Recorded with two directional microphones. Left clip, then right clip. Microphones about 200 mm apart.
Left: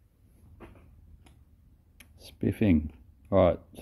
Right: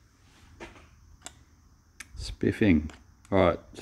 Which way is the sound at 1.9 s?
Centre (ahead or behind).